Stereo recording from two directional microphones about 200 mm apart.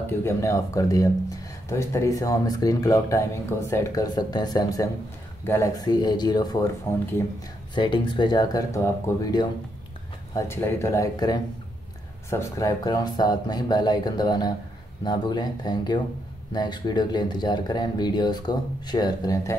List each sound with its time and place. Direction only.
0.0 s speech: 10° left (ahead or behind)
7.7 s speech: 25° left (ahead or behind)